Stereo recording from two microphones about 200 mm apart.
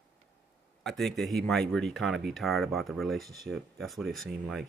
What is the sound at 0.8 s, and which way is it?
Speech, centre (ahead or behind).